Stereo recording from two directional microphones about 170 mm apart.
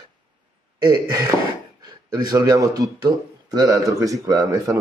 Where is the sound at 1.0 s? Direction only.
20° right (ahead or behind).